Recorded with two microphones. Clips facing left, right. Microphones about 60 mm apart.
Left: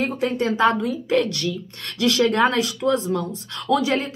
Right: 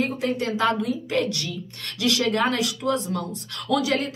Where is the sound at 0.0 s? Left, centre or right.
Left.